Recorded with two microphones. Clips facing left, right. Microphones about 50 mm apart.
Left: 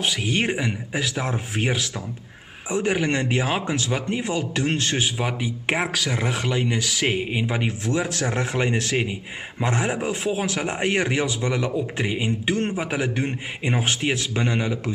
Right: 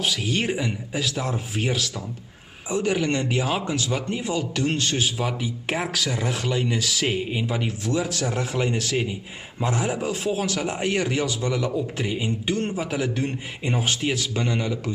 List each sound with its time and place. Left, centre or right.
0.0 s a man's voice: centre
10.0 s a man's voice: left